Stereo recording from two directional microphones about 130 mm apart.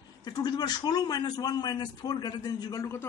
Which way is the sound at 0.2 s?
30° left (ahead or behind).